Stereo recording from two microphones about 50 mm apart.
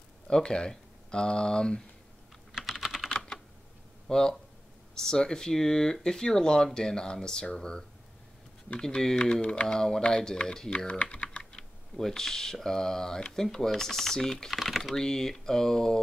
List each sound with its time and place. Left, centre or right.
0.3 s speech: centre
2.5 s typing: centre
3.1 s typing: centre
4.1 s speech: centre
10.9 s speech: left
12.0 s speech: centre
14.5 s speech: centre
15.0 s speech: centre